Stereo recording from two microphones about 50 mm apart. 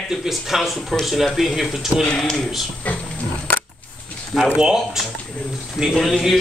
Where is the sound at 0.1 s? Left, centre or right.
Centre.